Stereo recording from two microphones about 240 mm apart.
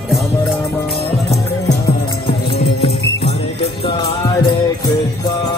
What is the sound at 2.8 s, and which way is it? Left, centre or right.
Jingle bell, left.